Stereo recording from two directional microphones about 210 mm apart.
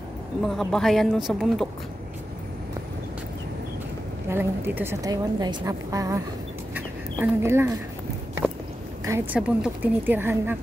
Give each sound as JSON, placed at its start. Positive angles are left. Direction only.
{"t": 0.4, "sound": "speech", "side_deg": 0}
{"t": 4.3, "sound": "a woman's voice", "side_deg": -10}
{"t": 6.7, "sound": "chicken", "side_deg": -10}
{"t": 9.0, "sound": "a woman's voice", "side_deg": -10}